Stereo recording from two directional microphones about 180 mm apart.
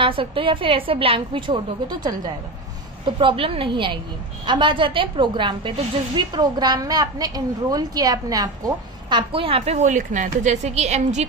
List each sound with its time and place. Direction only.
0.0 s a woman's voice: 30° right (ahead or behind)